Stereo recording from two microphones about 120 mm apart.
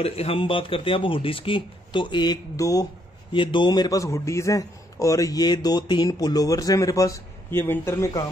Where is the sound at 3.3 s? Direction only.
40° left (ahead or behind).